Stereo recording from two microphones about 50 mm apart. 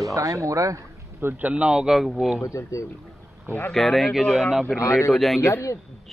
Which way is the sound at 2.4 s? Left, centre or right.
Left.